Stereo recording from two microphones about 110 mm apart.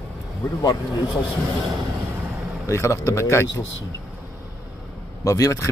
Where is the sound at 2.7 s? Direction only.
25° left (ahead or behind).